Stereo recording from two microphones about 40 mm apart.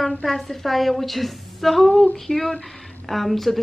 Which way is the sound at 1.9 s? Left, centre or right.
Left.